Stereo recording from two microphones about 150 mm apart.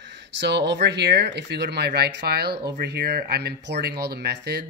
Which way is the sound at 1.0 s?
90° right.